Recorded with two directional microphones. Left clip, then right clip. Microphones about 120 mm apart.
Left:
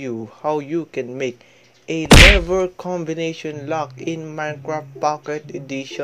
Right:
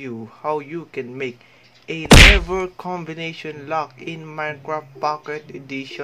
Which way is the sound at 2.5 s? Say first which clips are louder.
Left 4 dB; 25° left (ahead or behind).